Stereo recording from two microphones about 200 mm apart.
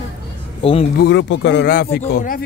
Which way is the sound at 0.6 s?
25° left (ahead or behind).